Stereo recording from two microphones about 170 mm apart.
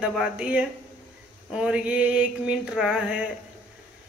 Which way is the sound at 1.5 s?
5° right (ahead or behind).